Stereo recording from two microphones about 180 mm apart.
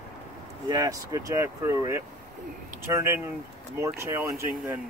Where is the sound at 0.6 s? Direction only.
20° right (ahead or behind).